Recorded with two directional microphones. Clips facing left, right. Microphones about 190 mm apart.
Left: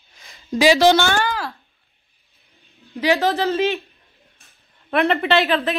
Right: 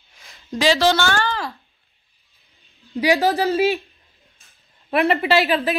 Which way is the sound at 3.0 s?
15° right (ahead or behind).